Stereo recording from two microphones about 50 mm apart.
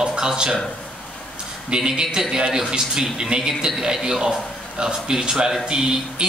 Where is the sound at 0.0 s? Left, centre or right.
Centre.